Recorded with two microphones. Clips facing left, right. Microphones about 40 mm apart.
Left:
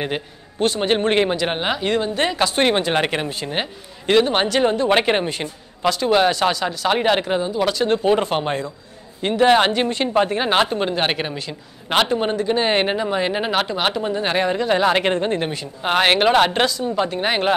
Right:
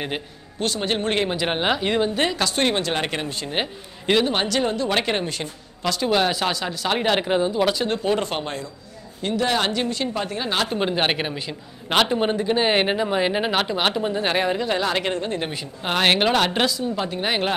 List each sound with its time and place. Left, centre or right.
0.0 s a man's voice: centre
1.3 s speech: centre
2.3 s a man's voice: centre
4.3 s a woman's voice: left
5.9 s a man's voice: centre
7.2 s speech: centre
7.8 s a man's voice: centre
8.5 s a woman's voice: left
10.7 s speech: centre
14.7 s a woman's voice: left
15.8 s a man's voice: centre